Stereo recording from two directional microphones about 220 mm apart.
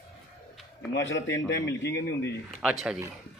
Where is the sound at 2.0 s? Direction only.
50° left (ahead or behind).